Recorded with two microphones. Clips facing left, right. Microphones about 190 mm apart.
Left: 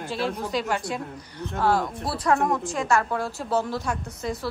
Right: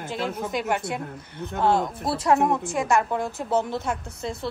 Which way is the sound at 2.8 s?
15° right (ahead or behind).